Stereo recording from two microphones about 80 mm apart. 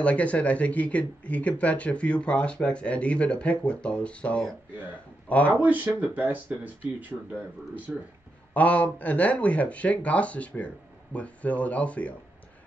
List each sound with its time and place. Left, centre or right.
0.0 s speech: centre
5.5 s speech: right
7.1 s speech: centre
8.5 s speech: centre